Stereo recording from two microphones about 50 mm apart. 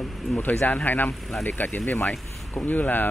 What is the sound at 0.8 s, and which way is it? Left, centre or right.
Speech, left.